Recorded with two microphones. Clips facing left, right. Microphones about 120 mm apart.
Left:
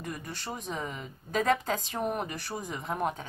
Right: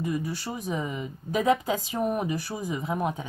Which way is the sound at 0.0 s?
5° right (ahead or behind).